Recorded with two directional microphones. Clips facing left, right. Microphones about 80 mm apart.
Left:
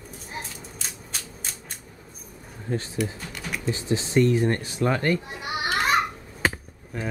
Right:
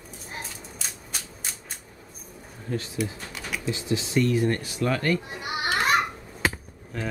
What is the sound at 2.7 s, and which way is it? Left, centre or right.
Speech, left.